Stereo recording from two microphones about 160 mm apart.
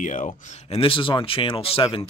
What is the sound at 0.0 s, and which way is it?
Speech, 50° left (ahead or behind).